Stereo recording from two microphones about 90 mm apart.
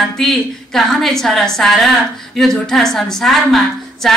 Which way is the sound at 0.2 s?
5° left (ahead or behind).